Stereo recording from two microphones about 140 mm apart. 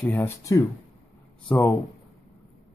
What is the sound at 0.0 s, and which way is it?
Speech, 15° left (ahead or behind).